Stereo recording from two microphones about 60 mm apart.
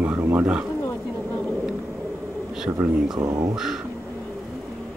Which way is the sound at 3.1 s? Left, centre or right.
Right.